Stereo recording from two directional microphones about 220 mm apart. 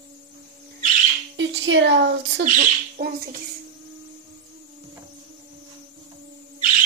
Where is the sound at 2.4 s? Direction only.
40° right (ahead or behind).